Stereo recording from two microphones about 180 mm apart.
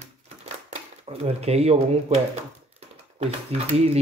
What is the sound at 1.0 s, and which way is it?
Speech, 35° right (ahead or behind).